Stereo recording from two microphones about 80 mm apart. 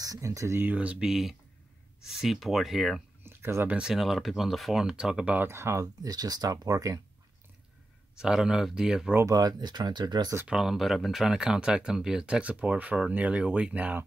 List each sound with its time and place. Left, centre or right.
0.0 s speech: right
0.6 s speech: centre
3.3 s speech: right
3.7 s speech: centre
5.5 s speech: right
6.0 s speech: right
8.2 s speech: centre
9.2 s speech: right
10.5 s speech: centre